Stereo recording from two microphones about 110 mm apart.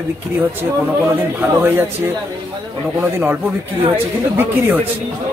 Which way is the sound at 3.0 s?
20° right (ahead or behind).